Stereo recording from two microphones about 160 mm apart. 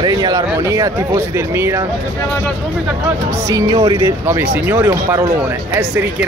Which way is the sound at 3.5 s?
20° right (ahead or behind).